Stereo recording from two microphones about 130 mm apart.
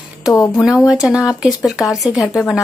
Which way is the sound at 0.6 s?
5° right (ahead or behind).